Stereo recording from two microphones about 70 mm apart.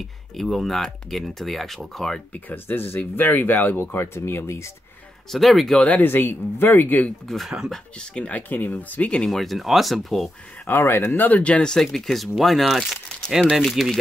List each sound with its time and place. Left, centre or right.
0.4 s speech: centre
2.3 s speech: left
5.3 s speech: centre
5.8 s speech: left
7.2 s speech: centre
8.3 s speech: left
9.3 s speech: centre
10.7 s speech: left; by 13.9 s centre